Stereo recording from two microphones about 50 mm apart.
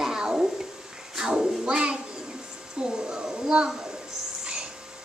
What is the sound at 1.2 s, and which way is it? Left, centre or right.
Child singing, centre.